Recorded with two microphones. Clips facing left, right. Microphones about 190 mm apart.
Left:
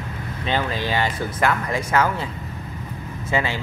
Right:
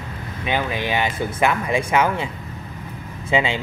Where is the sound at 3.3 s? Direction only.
20° right (ahead or behind).